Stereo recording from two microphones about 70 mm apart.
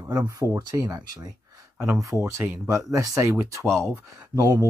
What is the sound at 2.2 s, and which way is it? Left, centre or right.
Speech, right.